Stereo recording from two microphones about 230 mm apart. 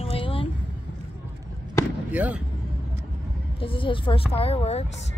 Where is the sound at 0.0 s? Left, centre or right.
Left.